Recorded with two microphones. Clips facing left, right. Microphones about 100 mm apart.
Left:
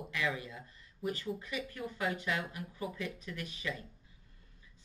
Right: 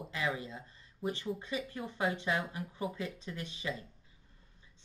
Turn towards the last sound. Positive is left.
turn(degrees=-25)  # may be behind; listen again after turning